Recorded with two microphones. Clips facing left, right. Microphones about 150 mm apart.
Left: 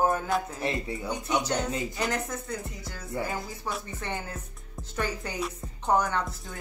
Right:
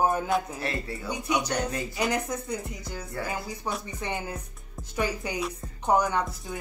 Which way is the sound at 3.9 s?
15° right (ahead or behind).